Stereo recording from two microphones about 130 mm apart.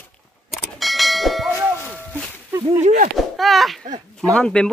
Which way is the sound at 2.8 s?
90° right.